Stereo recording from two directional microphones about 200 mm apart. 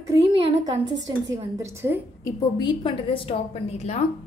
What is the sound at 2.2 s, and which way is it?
A woman's voice, 20° left (ahead or behind).